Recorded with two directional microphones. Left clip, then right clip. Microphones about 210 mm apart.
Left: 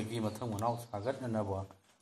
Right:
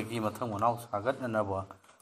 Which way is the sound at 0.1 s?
30° right (ahead or behind).